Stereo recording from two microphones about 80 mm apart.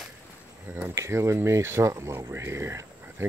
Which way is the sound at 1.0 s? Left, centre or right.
Right.